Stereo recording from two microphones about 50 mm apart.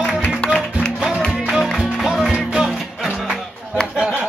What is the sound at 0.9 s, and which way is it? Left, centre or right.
Music, centre.